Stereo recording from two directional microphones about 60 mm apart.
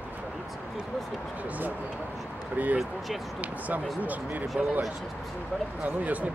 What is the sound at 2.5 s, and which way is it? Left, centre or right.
Speech, right.